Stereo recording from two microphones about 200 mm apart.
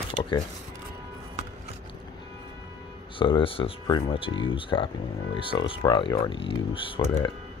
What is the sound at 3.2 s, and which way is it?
Speech, 25° left (ahead or behind).